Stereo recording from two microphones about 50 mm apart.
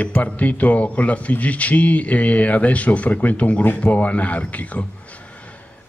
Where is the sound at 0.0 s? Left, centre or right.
Left.